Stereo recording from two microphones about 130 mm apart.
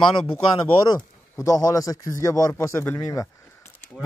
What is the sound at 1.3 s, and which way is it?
Speech, 25° left (ahead or behind).